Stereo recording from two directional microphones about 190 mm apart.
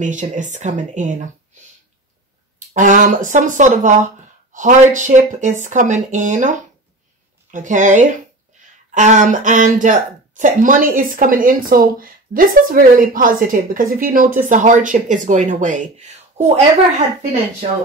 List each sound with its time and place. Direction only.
0.0 s speech: 40° right (ahead or behind)
2.7 s a woman's voice: 40° right (ahead or behind)